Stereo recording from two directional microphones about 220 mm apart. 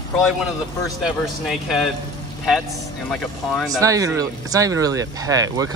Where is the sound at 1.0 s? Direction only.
Centre (ahead or behind).